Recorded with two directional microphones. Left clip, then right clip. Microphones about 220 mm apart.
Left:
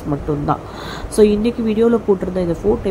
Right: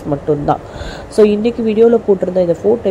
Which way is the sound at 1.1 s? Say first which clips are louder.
Right 3 dB; 5° right (ahead or behind).